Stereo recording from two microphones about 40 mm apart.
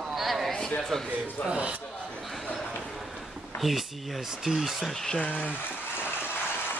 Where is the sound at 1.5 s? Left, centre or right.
Right.